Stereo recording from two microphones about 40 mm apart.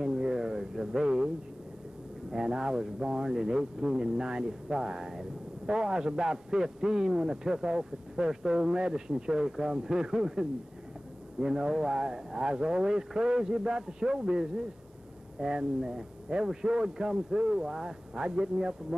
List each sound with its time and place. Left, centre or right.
0.0 s a sound: centre
1.0 s speech: centre
2.3 s a man's voice: centre